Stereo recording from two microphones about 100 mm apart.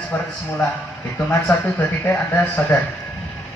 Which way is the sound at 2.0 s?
20° left (ahead or behind).